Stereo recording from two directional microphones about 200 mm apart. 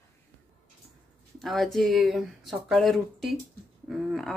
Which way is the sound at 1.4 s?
Centre (ahead or behind).